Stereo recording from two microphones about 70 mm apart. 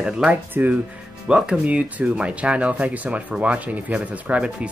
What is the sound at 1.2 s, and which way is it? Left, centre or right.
Speech, centre.